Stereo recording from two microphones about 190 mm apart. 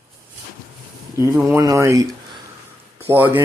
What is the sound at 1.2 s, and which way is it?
Speech, 15° right (ahead or behind).